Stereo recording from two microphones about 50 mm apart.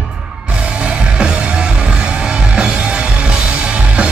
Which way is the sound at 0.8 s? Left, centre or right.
Centre.